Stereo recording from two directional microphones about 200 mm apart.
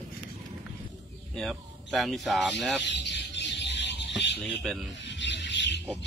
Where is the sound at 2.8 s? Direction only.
60° left (ahead or behind).